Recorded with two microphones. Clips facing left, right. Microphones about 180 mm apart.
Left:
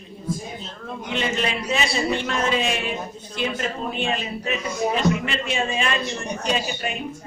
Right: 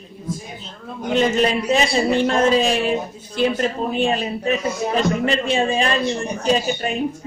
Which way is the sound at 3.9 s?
35° right (ahead or behind).